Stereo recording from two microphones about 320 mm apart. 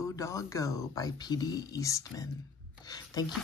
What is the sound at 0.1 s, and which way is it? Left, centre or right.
Speech, centre.